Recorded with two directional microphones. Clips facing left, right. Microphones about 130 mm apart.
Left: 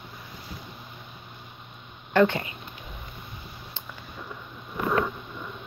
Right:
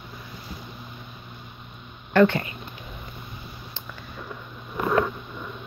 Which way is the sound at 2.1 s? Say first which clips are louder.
Right 3 dB; 20° left (ahead or behind).